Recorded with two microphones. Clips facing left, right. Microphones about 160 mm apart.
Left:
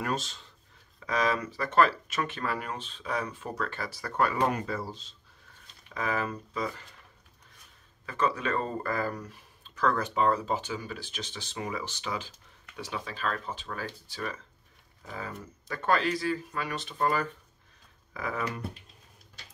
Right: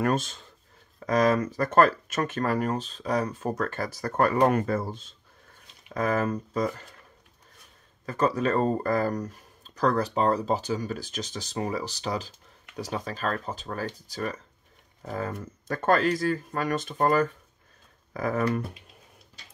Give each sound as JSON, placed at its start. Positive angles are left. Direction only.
{"t": 0.0, "sound": "speech", "side_deg": -50}
{"t": 8.0, "sound": "speech", "side_deg": -40}